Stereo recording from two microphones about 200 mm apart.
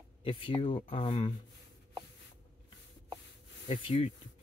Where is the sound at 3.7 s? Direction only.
25° left (ahead or behind).